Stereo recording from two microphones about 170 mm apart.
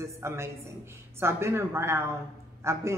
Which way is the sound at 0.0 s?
15° right (ahead or behind).